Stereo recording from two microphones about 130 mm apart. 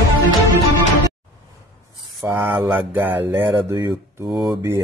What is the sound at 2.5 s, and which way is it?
Mantra, 15° right (ahead or behind).